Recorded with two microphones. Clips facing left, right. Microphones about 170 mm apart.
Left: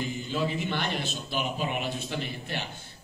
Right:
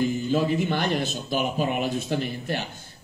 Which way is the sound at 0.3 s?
45° right (ahead or behind).